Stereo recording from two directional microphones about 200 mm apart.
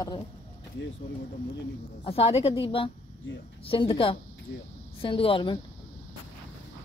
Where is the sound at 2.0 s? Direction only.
30° left (ahead or behind).